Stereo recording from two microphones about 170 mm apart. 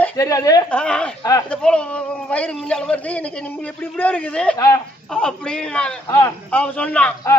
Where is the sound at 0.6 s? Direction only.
5° left (ahead or behind).